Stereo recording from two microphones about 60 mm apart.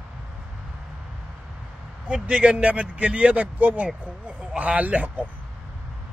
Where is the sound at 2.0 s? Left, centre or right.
Centre.